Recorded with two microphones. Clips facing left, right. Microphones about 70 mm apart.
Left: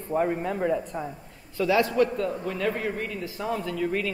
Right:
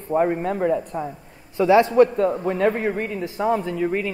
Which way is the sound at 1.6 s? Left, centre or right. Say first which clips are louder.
Right 7 dB; right.